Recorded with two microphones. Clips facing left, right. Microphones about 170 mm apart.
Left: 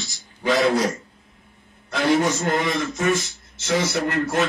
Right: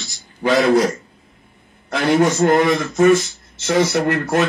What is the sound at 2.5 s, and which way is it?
Speech, 65° right (ahead or behind).